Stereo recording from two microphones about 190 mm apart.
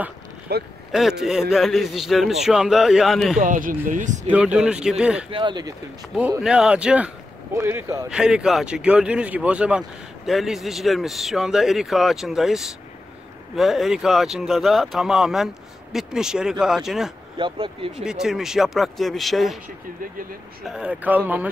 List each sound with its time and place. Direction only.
0.5 s speech: 55° right (ahead or behind)
0.9 s speech: centre (ahead or behind)
3.3 s speech: 45° right (ahead or behind)
4.3 s speech: 5° right (ahead or behind)
5.3 s speech: 25° right (ahead or behind)
6.4 s speech: 5° right (ahead or behind)
17.4 s speech: 30° right (ahead or behind)
18.0 s speech: 5° right (ahead or behind)
20.6 s speech: 5° right (ahead or behind)